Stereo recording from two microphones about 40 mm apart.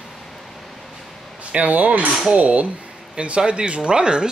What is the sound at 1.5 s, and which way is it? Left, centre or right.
Speech, right.